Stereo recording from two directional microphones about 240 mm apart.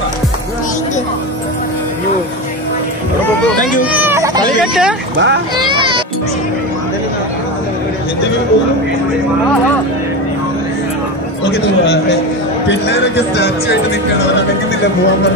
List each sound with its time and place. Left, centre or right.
3.8 s baby cry: centre
4.6 s speech: centre
5.1 s speech: right
5.6 s music: centre
12.6 s speech: left